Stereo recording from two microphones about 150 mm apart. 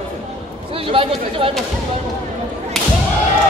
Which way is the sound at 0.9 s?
35° right (ahead or behind).